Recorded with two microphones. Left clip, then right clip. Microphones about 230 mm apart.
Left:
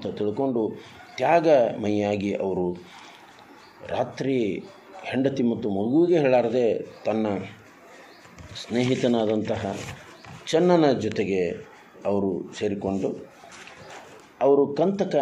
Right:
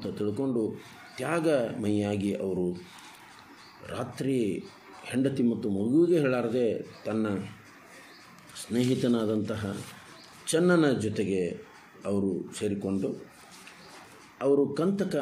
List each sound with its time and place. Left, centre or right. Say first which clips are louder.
0.0 s a man's voice: left 5 dB; centre
3.8 s a man's voice: left 7 dB; centre
8.7 s a man's voice: left 5 dB; centre
10.4 s a man's voice: left 5 dB; centre
14.4 s a man's voice: left 6 dB; centre